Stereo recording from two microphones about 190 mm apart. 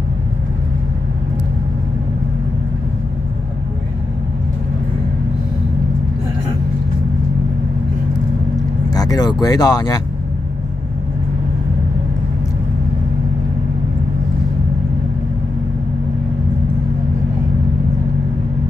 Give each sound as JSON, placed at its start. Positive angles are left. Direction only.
{"t": 8.9, "sound": "speech", "side_deg": 20}